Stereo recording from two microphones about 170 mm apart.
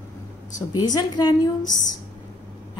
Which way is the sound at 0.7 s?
25° left (ahead or behind).